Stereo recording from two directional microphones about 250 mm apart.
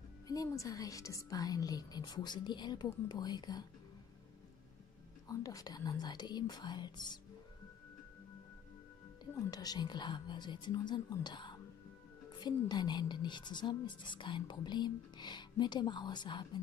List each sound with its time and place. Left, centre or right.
0.3 s a woman's voice: centre
5.3 s a woman's voice: centre
9.2 s a woman's voice: centre